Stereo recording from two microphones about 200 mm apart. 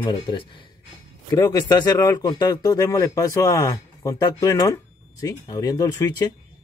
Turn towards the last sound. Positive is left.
turn(degrees=20)  # may be behind; listen again after turning